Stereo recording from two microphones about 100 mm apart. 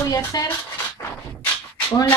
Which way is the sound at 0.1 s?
40° left (ahead or behind).